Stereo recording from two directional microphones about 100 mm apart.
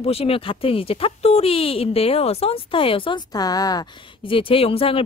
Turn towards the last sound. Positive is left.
turn(degrees=70)  # may be behind; listen again after turning